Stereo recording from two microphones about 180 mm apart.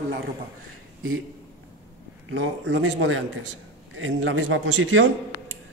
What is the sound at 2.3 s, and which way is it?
A man's voice, 90° right.